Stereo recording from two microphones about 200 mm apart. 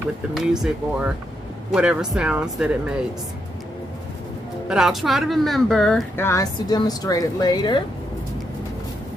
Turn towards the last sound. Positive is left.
turn(degrees=20)  # may be behind; listen again after turning